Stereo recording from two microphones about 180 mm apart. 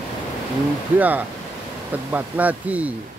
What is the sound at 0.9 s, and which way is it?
Speech, 10° right (ahead or behind).